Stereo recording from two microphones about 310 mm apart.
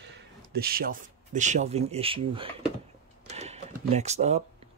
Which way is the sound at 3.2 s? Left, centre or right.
Right.